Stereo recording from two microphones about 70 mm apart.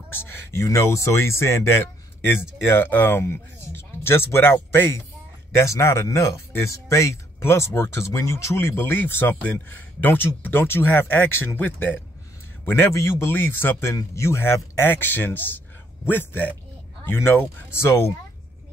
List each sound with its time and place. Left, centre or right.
0.1 s speech: left
5.5 s a man's voice: left